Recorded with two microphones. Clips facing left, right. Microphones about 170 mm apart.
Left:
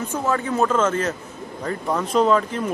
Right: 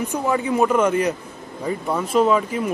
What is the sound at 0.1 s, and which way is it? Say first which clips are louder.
Speech: right 1 dB; 15° right (ahead or behind).